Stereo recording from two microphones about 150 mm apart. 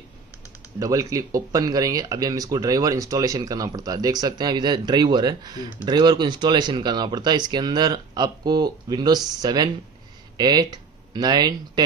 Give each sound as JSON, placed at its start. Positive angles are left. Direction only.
{"t": 0.7, "sound": "speech", "side_deg": -20}